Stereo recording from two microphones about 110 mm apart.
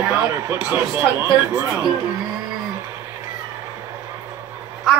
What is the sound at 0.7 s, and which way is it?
Speech, 20° right (ahead or behind).